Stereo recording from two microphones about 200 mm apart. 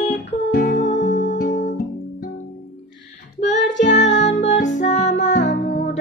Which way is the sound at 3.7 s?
65° left (ahead or behind).